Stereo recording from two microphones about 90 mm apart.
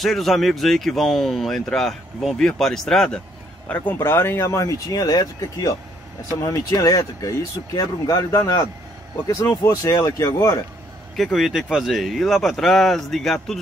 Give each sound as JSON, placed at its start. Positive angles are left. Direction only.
{"t": 0.0, "sound": "speech", "side_deg": 0}
{"t": 3.6, "sound": "speech", "side_deg": 20}
{"t": 11.3, "sound": "speech", "side_deg": -5}